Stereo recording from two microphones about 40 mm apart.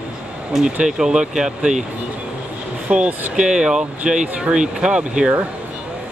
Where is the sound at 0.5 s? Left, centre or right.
Centre.